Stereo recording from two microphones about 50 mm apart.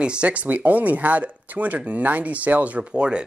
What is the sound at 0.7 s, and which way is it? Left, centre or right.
Speech, right.